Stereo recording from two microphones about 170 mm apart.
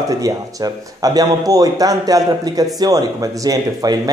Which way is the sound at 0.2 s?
20° right (ahead or behind).